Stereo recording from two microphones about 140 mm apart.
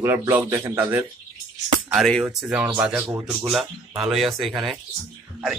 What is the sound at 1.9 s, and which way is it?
Speech, centre (ahead or behind).